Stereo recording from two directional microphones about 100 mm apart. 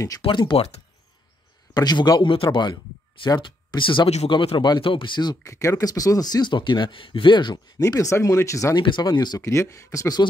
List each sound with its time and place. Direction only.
0.2 s speech: 50° left (ahead or behind)
1.7 s speech: 45° left (ahead or behind)
5.4 s speech: 30° left (ahead or behind); by 7.5 s 50° left (ahead or behind)
7.8 s speech: 30° left (ahead or behind)
8.7 s speech: 50° left (ahead or behind)
9.4 s speech: 30° left (ahead or behind)